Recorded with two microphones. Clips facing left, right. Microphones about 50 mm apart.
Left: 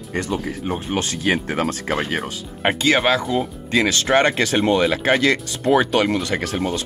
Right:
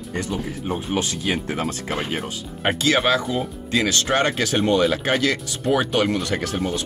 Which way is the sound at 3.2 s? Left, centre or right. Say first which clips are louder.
Left 3 dB; centre.